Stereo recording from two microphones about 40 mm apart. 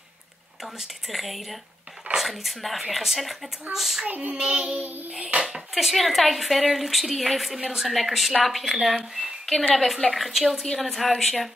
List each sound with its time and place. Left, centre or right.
0.6 s speech: centre
3.7 s child singing: centre
4.1 s child singing: right
4.4 s child singing: right
5.2 s speech: right
5.5 s a woman's voice: centre